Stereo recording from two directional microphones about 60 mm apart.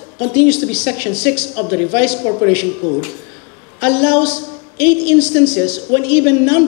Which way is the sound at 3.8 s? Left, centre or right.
Left.